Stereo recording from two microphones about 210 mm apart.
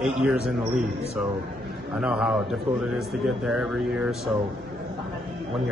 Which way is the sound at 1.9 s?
5° right (ahead or behind).